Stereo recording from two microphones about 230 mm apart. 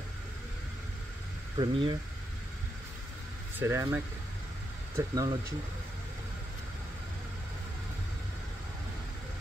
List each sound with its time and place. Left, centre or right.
1.6 s speech: right
3.5 s speech: centre